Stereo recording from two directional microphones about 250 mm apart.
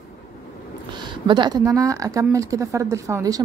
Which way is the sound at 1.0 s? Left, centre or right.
Centre.